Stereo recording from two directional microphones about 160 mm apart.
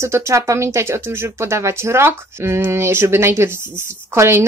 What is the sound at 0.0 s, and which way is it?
Speech, 15° right (ahead or behind).